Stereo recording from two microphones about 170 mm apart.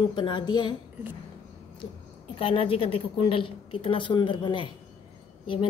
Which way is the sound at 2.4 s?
35° left (ahead or behind).